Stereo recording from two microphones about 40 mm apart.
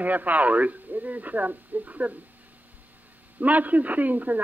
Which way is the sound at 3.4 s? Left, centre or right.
Right.